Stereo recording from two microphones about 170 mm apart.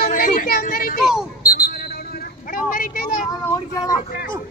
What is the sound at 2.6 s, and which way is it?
Speech, 60° left (ahead or behind).